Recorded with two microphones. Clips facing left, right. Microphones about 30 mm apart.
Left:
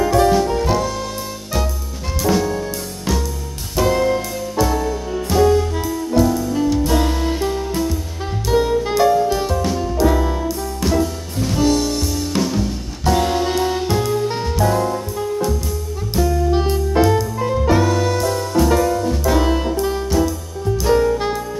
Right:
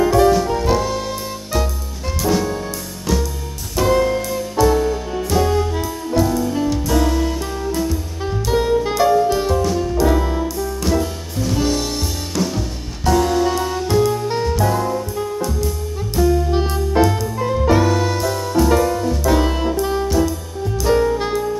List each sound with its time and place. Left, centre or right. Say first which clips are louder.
0.0 s music: right 1 dB; centre
3.1 s music: right 1 dB; centre
3.7 s music: even; centre
4.7 s music: right 2 dB; centre
6.9 s music: right 1 dB; centre
7.7 s music: even; centre
8.5 s saxophone: left 1 dB; centre
9.7 s music: even; centre
12.4 s music: even; centre
13.2 s music: right 1 dB; left
13.8 s music: right 2 dB; centre
20.8 s saxophone: even; centre